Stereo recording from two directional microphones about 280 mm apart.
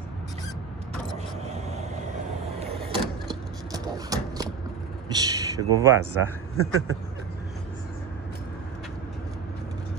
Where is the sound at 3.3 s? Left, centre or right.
Centre.